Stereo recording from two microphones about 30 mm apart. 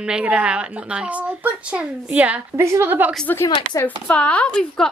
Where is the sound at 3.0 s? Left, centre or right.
Right.